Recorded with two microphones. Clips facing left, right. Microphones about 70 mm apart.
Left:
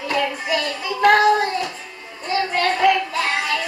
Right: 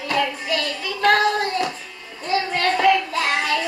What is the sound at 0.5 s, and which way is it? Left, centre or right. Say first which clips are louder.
Speech: left 2 dB; centre.